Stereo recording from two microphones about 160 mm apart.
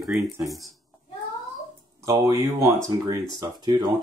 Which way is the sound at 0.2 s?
20° right (ahead or behind).